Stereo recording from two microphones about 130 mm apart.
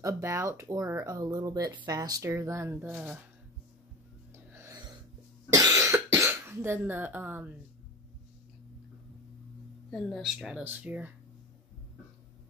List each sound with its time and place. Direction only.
0.0 s speech: 20° right (ahead or behind)
4.5 s snort: 20° right (ahead or behind)
5.5 s cough: 30° right (ahead or behind)
9.8 s speech: 5° left (ahead or behind); by 11.1 s 15° right (ahead or behind)